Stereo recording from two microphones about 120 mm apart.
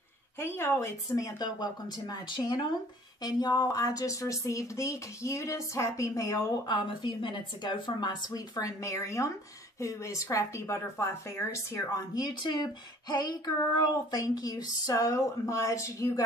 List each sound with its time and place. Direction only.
0.4 s speech: 20° left (ahead or behind)